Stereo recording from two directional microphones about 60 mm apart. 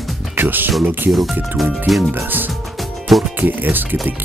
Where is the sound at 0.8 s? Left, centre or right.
Right.